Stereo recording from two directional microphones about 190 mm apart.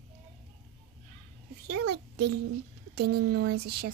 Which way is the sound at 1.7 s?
60° right (ahead or behind).